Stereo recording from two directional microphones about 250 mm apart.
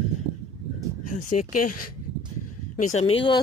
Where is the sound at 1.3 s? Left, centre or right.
Left.